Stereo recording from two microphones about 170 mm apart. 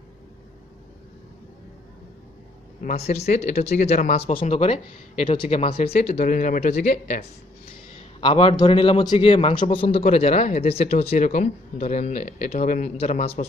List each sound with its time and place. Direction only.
2.8 s speech: 45° left (ahead or behind)
8.2 s speech: 30° left (ahead or behind)